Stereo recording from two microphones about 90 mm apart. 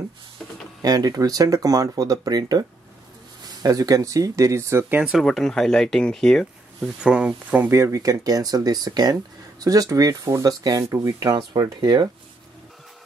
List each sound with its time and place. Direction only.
0.8 s speech: 45° right (ahead or behind)
3.6 s speech: 40° right (ahead or behind); by 5.0 s 25° right (ahead or behind)
5.0 s speech: centre (ahead or behind)
6.8 s speech: 10° right (ahead or behind)
7.6 s speech: 30° right (ahead or behind); by 12.1 s 50° right (ahead or behind)